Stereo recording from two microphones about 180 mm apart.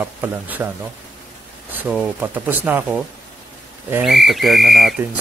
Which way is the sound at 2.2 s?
10° right (ahead or behind).